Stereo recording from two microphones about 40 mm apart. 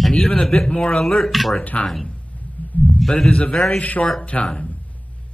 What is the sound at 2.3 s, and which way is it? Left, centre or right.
Heart sounds, left.